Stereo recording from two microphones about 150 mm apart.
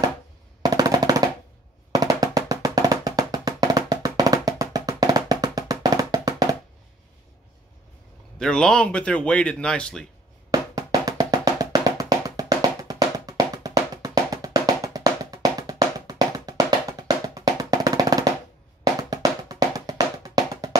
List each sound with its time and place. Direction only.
0.6 s drum: 25° right (ahead or behind)
1.9 s music: 25° right (ahead or behind)
8.4 s speech: 5° left (ahead or behind)
10.5 s music: 25° right (ahead or behind)